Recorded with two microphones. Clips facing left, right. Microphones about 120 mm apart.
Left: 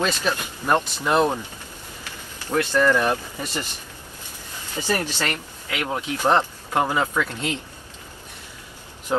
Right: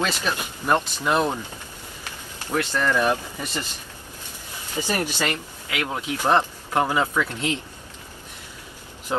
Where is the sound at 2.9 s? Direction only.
15° right (ahead or behind).